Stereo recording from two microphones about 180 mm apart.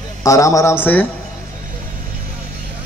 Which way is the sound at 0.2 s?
20° left (ahead or behind).